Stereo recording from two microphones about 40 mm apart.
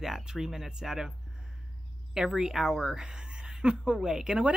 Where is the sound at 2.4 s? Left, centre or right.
Centre.